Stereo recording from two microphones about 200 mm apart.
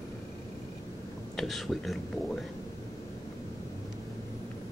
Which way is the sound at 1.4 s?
Centre (ahead or behind).